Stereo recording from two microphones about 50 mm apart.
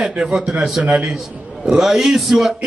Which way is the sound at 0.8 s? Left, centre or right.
Right.